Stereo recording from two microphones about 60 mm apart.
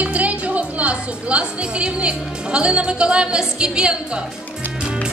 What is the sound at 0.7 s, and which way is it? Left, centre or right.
A woman's voice, right.